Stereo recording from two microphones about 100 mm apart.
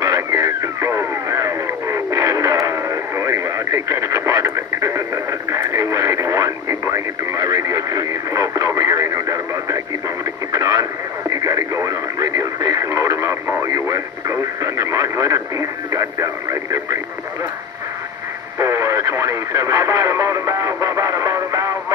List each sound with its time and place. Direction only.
0.0 s radio: 35° right (ahead or behind)
18.6 s radio: 30° right (ahead or behind)